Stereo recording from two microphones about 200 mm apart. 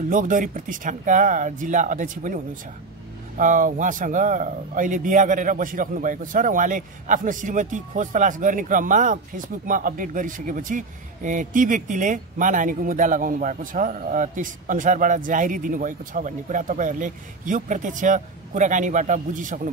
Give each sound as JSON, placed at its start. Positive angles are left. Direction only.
{"t": 0.1, "sound": "a man's voice", "side_deg": -40}